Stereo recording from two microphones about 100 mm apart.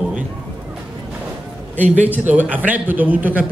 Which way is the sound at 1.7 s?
15° right (ahead or behind).